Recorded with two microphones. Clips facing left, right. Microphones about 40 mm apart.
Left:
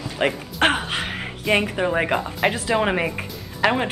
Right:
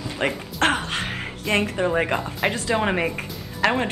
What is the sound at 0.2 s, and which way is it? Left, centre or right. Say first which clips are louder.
Speech: left 3 dB; centre.